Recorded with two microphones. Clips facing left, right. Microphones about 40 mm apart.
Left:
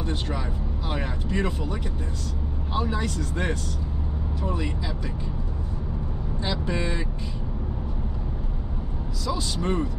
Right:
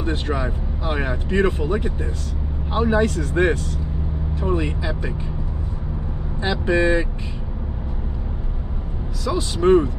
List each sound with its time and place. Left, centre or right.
0.0 s speech: right
6.6 s speech: right
9.6 s speech: right